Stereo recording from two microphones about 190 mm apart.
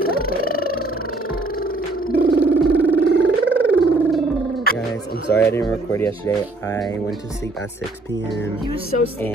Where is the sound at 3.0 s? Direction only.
65° right (ahead or behind).